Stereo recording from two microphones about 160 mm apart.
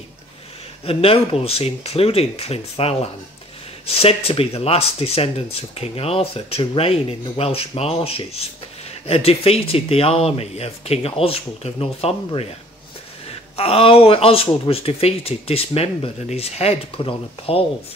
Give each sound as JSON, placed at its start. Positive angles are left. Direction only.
{"t": 0.8, "sound": "speech", "side_deg": 35}
{"t": 13.6, "sound": "speech", "side_deg": 35}